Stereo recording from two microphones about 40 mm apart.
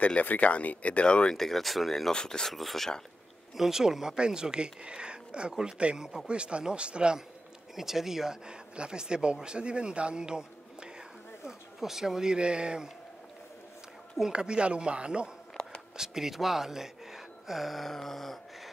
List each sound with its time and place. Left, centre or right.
0.0 s speech: left
1.0 s speech: left
1.3 s speech: centre
2.1 s speech: centre
2.5 s speech: centre
3.5 s speech: centre; by 7.2 s right
7.7 s speech: centre
8.5 s speech: right
11.4 s speech: centre
14.3 s speech: right
16.0 s speech: centre